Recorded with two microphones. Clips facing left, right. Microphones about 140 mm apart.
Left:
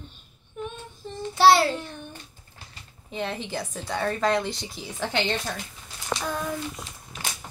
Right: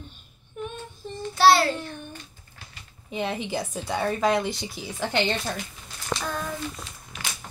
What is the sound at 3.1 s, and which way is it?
A woman's voice, 15° right (ahead or behind).